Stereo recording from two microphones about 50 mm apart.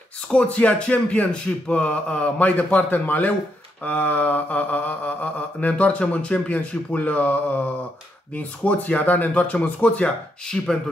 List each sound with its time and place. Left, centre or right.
0.3 s speech: left
3.8 s mantra: left
8.3 s speech: left; by 10.8 s centre